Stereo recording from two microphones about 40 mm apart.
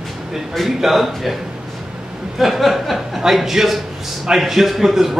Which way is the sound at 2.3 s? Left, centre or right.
Centre.